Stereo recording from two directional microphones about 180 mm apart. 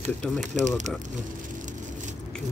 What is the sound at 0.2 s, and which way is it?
Speech, 5° left (ahead or behind).